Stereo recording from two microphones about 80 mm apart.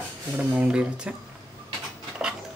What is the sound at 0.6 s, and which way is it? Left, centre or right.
Speech, centre.